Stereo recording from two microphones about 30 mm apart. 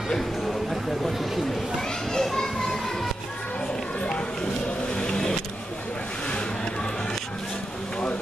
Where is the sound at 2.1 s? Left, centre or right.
Centre.